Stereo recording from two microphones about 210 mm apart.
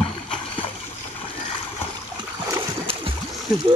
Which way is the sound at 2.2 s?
20° right (ahead or behind).